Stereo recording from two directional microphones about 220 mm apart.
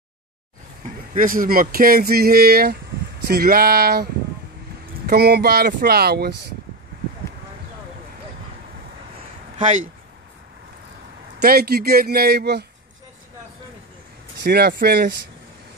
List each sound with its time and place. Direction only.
1.1 s speech: 40° right (ahead or behind)
11.4 s speech: 45° right (ahead or behind)
14.4 s speech: 50° right (ahead or behind)